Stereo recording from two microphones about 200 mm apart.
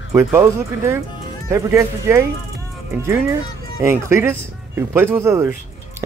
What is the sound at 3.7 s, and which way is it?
Speech, 15° right (ahead or behind).